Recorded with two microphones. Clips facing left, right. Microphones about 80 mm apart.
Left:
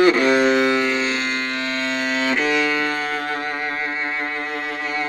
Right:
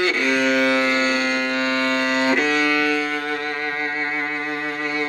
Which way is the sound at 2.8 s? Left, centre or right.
Left.